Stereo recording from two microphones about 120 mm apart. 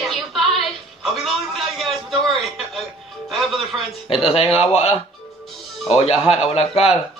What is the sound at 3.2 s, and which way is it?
Music, centre (ahead or behind).